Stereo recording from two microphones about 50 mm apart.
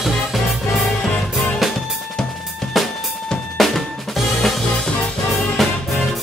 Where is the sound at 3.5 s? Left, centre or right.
Centre.